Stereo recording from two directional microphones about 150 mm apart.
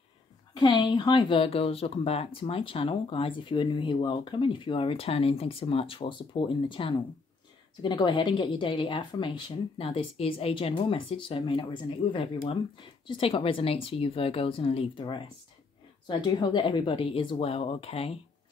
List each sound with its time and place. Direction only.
0.6 s speech: 30° left (ahead or behind)